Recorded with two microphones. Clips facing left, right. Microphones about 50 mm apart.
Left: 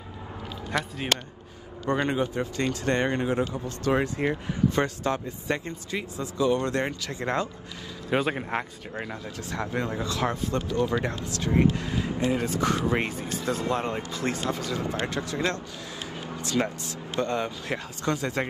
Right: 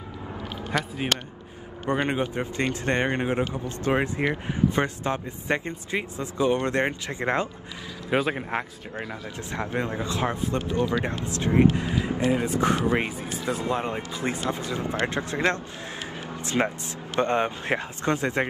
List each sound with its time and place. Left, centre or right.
0.7 s speech: centre
1.9 s speech: right
8.1 s speech: centre
9.5 s speech: right
12.4 s speech: right
12.9 s speech: centre; by 18.5 s right